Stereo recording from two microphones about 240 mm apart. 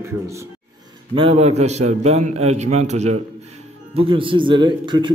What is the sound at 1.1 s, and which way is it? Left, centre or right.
A man's voice, right.